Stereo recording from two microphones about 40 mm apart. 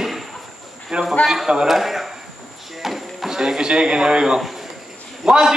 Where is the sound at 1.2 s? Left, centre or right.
Centre.